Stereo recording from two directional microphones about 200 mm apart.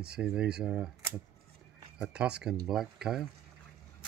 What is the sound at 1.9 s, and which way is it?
Speech, 5° right (ahead or behind).